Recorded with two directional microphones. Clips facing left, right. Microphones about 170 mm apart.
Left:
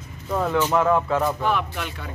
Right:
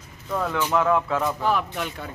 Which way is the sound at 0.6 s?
5° left (ahead or behind).